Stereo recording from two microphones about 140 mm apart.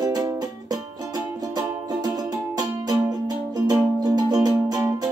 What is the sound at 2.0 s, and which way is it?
Music, 25° right (ahead or behind).